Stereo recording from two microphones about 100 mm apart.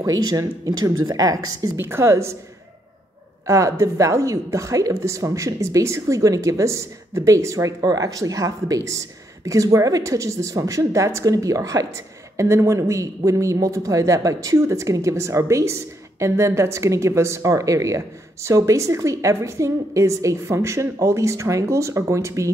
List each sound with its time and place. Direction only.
0.0 s speech: 40° right (ahead or behind)
1.8 s a woman's voice: 25° right (ahead or behind)
3.4 s speech: 30° right (ahead or behind)